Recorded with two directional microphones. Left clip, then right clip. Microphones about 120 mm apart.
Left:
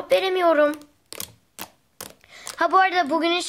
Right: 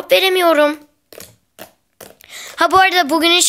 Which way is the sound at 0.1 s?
25° right (ahead or behind).